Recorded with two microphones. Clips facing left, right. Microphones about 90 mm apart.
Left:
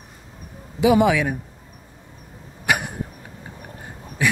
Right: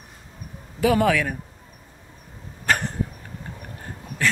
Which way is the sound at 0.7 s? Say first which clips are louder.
Left 3 dB; 15° left (ahead or behind).